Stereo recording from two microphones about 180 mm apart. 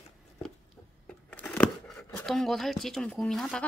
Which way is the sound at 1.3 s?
10° left (ahead or behind).